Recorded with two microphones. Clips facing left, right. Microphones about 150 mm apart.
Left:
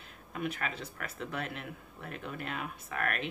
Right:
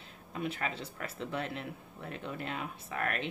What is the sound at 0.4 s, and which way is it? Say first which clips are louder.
Speech: even; 30° right (ahead or behind).